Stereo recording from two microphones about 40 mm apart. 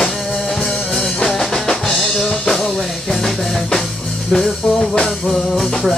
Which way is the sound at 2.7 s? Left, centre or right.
Centre.